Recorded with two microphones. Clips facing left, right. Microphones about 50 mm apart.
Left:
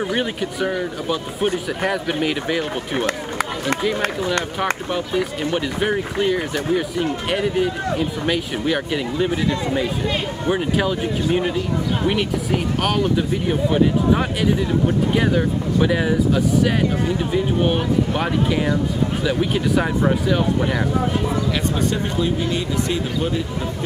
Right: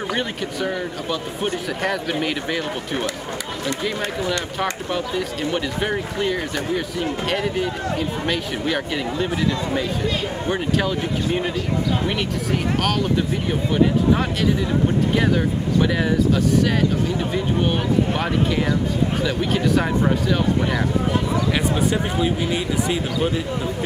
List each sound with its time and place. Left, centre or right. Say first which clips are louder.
0.1 s speech: left 2 dB; centre
4.9 s speech: left 2 dB; centre
10.4 s speech: left 3 dB; centre
12.8 s speech: left 1 dB; centre
19.2 s speech: left 1 dB; centre
21.9 s speech: even; centre